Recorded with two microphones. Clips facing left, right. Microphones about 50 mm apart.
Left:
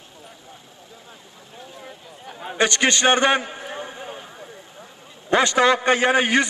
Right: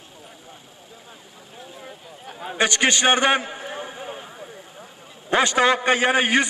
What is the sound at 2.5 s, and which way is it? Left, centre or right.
Speech, right.